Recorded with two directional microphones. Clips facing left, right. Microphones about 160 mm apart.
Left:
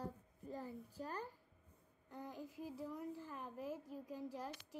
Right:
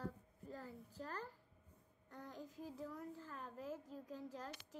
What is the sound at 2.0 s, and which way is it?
A woman's voice, 10° left (ahead or behind).